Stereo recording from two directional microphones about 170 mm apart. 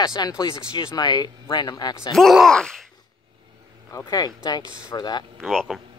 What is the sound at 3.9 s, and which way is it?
Speech, 25° left (ahead or behind).